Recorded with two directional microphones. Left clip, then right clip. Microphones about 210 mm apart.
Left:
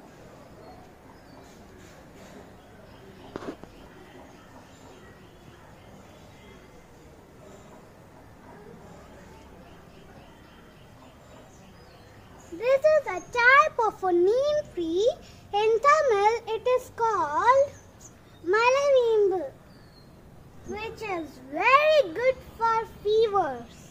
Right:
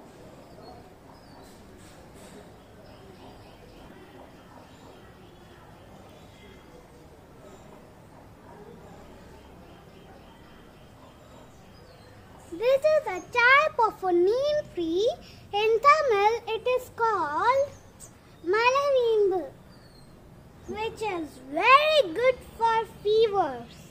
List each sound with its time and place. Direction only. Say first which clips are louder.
12.5 s a child's voice: left 1 dB; 15° right (ahead or behind); by 19.0 s centre (ahead or behind)
21.1 s a child's voice: right 1 dB; 20° right (ahead or behind); by 23.6 s 5° right (ahead or behind)